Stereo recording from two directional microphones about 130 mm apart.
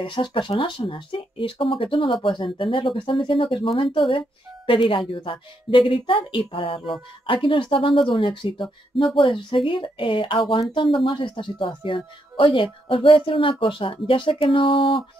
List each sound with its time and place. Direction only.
0.0 s speech: 40° left (ahead or behind)